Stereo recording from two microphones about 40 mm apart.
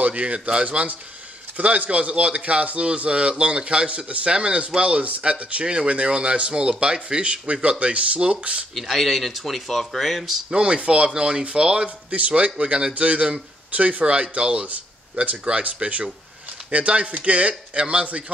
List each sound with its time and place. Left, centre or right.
0.0 s a man's voice: right
1.6 s a man's voice: right
8.7 s speech: centre
10.5 s a man's voice: right
14.0 s a man's voice: right